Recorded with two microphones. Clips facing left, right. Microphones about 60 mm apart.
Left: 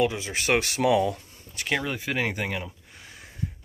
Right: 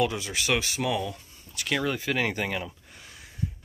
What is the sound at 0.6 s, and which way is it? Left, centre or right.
Speech, left.